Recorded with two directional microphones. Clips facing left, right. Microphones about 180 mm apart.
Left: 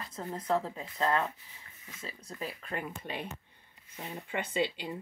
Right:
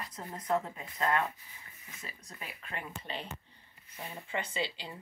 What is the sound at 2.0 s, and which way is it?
Speech, 35° left (ahead or behind).